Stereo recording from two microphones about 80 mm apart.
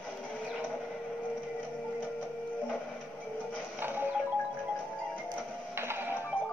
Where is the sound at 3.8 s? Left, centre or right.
Right.